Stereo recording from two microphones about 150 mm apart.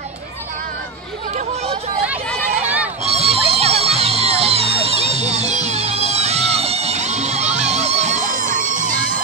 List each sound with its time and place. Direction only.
2.6 s neigh: 10° right (ahead or behind)
3.1 s music: 40° right (ahead or behind); by 9.2 s 60° right (ahead or behind)